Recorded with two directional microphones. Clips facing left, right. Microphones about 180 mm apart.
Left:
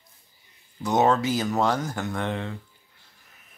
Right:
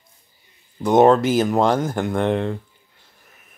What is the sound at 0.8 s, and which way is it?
Speech, 55° right (ahead or behind).